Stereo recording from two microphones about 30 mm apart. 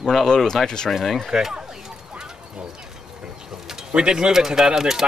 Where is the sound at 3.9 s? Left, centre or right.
Right.